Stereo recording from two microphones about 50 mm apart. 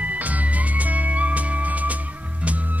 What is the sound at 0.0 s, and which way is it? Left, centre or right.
Music, right.